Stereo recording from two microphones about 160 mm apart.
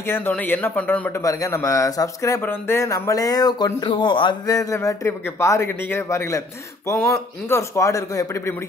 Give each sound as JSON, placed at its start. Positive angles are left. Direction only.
{"t": 0.0, "sound": "a man's voice", "side_deg": 15}